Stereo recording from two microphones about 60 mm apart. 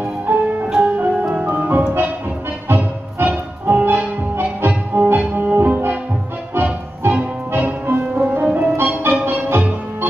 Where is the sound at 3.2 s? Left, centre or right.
Right.